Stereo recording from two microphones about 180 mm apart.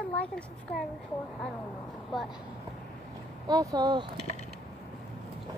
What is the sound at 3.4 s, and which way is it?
Speech, 20° right (ahead or behind).